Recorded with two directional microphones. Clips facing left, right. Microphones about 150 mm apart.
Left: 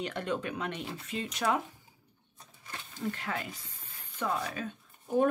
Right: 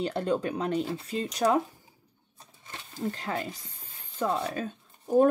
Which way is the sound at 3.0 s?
30° right (ahead or behind).